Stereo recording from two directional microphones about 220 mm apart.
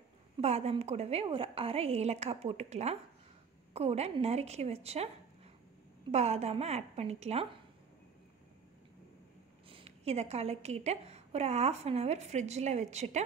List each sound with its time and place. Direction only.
0.4 s a woman's voice: 30° right (ahead or behind)
6.1 s a woman's voice: 30° right (ahead or behind)
9.7 s a woman's voice: 25° right (ahead or behind)